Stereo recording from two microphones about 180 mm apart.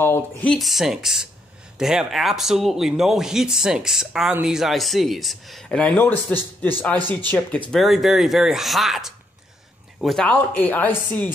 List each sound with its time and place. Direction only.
0.0 s speech: 10° left (ahead or behind)
7.0 s speech: 25° right (ahead or behind)
7.2 s speech: 10° left (ahead or behind)